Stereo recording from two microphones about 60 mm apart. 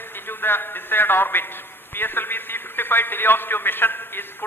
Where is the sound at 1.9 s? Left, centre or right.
Left.